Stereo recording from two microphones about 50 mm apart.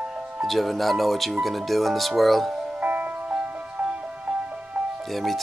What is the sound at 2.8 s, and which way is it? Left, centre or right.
Music, right.